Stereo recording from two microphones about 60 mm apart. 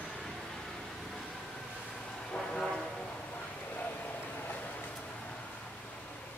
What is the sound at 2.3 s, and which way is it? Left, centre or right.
Train, centre.